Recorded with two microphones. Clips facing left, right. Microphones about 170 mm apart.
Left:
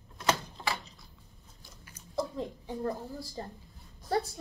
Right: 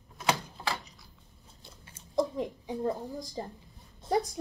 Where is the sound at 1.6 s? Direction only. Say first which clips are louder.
Right 1 dB; 25° right (ahead or behind).